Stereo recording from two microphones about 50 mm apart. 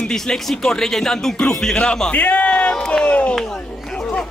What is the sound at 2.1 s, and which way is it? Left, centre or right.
A man's voice, left.